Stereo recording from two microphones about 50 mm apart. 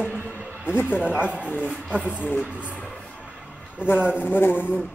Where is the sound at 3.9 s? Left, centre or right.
Right.